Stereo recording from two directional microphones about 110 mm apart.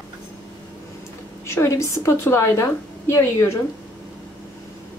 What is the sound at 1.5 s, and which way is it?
A woman's voice, 25° left (ahead or behind).